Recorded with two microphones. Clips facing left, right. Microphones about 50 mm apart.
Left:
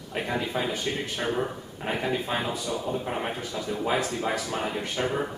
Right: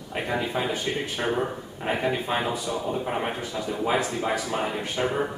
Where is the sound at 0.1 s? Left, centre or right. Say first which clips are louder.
Right 2 dB; centre.